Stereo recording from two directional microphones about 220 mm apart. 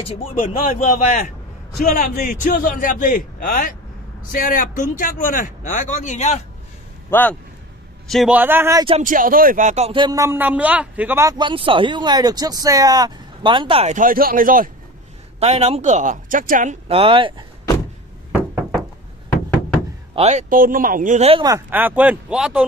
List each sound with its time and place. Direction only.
0.3 s speech: 30° left (ahead or behind)
1.9 s speech: 35° left (ahead or behind)
7.1 s speech: 10° left (ahead or behind)
8.1 s a man's voice: 5° right (ahead or behind)
9.0 s speech: 40° right (ahead or behind); by 17.5 s 25° right (ahead or behind)
20.2 s speech: 30° right (ahead or behind); by 22.7 s 5° right (ahead or behind)